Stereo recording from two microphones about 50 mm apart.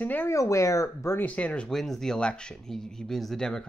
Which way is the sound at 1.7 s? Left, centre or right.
Centre.